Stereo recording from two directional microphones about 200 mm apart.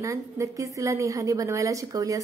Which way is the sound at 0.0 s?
15° right (ahead or behind).